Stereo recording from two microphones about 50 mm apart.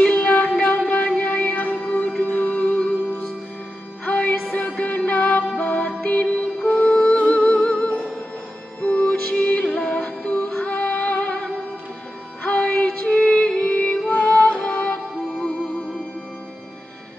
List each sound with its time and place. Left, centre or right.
0.0 s child singing: left
0.6 s music: left
12.4 s music: centre
15.3 s music: centre